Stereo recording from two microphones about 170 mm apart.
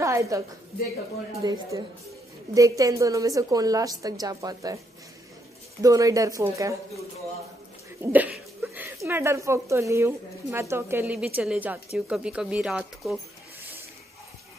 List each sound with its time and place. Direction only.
0.0 s a sound: 20° right (ahead or behind)
1.4 s a woman's voice: 25° right (ahead or behind)
5.8 s a woman's voice: 20° right (ahead or behind)
8.0 s a woman's voice: 10° right (ahead or behind)